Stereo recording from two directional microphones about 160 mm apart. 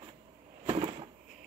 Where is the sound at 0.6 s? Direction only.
30° right (ahead or behind).